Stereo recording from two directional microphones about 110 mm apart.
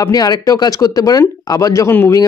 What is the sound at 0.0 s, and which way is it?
Speech, 35° left (ahead or behind).